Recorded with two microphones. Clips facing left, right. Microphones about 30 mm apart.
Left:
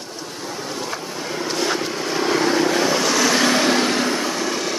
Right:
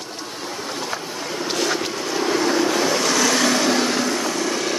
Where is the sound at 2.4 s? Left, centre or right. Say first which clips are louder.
Left 1 dB; centre.